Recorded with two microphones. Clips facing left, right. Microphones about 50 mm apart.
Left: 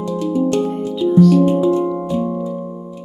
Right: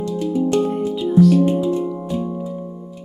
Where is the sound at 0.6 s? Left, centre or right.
Centre.